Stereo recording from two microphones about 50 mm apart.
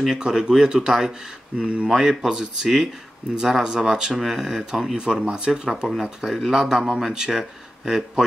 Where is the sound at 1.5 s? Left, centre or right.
Right.